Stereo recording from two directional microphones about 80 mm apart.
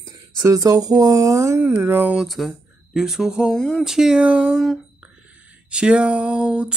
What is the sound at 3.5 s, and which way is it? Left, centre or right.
Speech, centre.